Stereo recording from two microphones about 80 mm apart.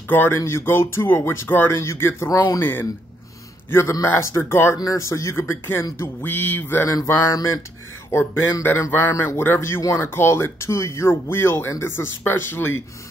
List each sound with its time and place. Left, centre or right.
0.1 s speech: left
4.1 s speech: left
4.7 s speech: left
5.4 s speech: left
7.2 s speech: left
8.1 s speech: left